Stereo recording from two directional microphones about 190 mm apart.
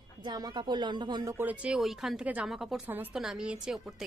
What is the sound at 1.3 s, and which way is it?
A woman's voice, 5° right (ahead or behind).